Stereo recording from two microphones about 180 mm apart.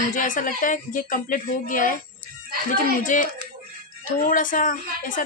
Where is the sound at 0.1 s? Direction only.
45° left (ahead or behind).